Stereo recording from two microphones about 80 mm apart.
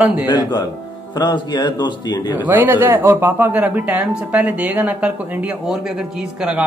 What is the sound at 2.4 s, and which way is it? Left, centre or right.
Speech, right.